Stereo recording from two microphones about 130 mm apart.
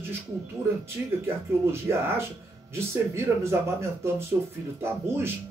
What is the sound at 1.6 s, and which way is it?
Speech, 20° right (ahead or behind).